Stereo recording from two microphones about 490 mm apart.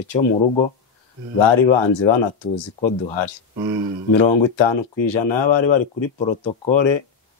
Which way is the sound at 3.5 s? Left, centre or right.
Centre.